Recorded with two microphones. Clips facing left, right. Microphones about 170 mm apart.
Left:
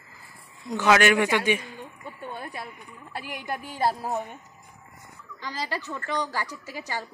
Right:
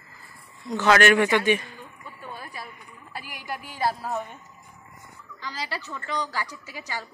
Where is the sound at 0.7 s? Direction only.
15° left (ahead or behind).